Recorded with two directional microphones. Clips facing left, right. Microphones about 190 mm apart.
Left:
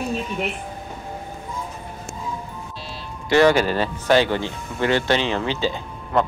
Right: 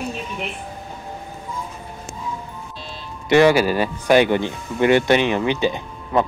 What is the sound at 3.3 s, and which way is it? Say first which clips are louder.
Speech: right 2 dB; 15° right (ahead or behind).